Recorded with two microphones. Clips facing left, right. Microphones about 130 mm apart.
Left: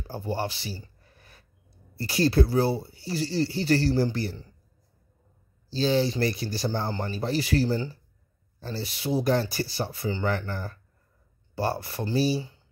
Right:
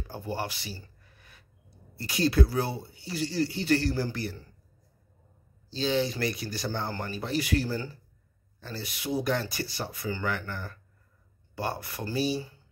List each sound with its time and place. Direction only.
0.0 s a sound: 30° left (ahead or behind)
2.0 s speech: 35° left (ahead or behind)
5.7 s speech: 35° left (ahead or behind)